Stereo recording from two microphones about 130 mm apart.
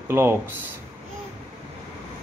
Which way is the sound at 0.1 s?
20° right (ahead or behind).